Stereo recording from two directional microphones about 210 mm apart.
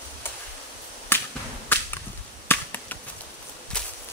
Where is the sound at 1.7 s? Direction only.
10° left (ahead or behind).